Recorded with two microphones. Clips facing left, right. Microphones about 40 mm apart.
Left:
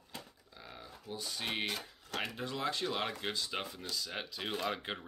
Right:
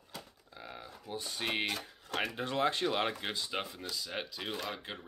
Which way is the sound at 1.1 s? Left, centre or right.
Right.